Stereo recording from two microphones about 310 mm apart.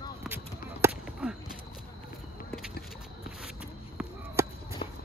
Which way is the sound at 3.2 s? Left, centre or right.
Centre.